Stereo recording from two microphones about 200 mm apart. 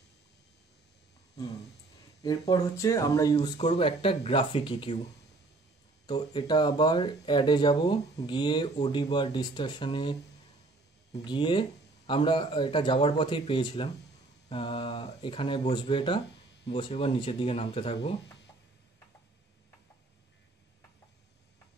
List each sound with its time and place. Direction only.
2.2 s speech: 20° left (ahead or behind)
6.0 s speech: 20° left (ahead or behind)
11.2 s speech: 25° left (ahead or behind)